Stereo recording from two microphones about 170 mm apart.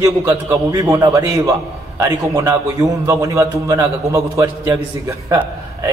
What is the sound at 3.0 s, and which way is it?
A man's voice, 15° right (ahead or behind).